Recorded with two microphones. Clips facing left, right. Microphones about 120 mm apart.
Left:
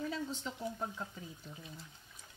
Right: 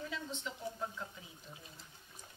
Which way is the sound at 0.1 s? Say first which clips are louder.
Left 4 dB; 40° left (ahead or behind).